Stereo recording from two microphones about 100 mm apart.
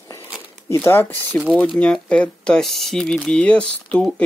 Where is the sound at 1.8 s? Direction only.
10° left (ahead or behind).